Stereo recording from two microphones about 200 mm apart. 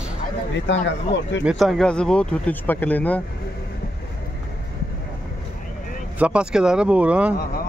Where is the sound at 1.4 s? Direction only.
Centre (ahead or behind).